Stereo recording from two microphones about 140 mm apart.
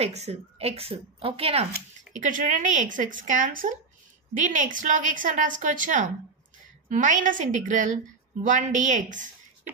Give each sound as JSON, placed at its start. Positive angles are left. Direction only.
{"t": 0.0, "sound": "a woman's voice", "side_deg": -50}
{"t": 1.7, "sound": "a woman's voice", "side_deg": -70}